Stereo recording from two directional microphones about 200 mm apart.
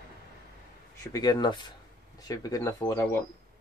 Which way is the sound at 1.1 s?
20° left (ahead or behind).